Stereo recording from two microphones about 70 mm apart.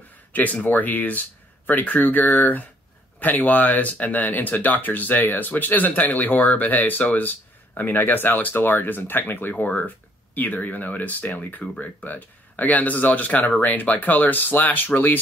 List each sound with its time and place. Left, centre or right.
0.3 s speech: left